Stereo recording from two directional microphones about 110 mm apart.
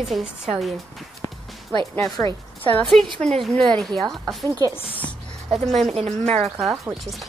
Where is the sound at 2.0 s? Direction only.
30° left (ahead or behind).